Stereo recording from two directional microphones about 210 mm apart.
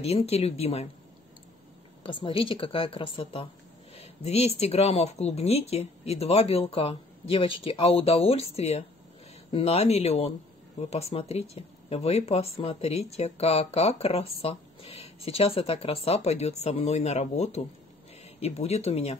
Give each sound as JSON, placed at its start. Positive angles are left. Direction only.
{"t": 0.0, "sound": "speech", "side_deg": 30}
{"t": 2.0, "sound": "speech", "side_deg": 25}